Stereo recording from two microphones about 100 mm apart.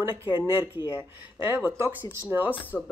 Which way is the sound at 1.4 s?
25° right (ahead or behind).